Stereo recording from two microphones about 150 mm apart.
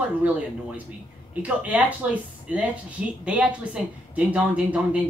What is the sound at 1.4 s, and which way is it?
A woman's voice, 10° right (ahead or behind).